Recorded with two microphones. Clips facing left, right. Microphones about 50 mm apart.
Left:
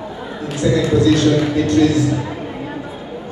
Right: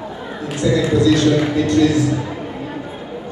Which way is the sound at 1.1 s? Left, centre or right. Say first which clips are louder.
Even; right.